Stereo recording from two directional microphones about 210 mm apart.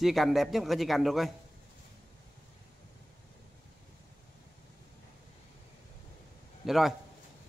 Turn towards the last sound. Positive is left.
turn(degrees=0)  # may be behind; listen again after turning